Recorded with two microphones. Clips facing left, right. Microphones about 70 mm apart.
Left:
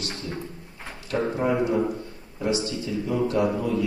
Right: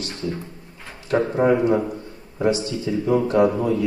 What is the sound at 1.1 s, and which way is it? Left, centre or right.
Speech, right.